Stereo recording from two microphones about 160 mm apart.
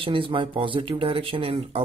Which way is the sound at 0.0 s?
35° right (ahead or behind).